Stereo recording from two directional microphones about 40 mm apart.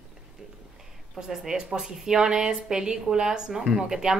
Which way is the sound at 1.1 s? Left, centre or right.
Centre.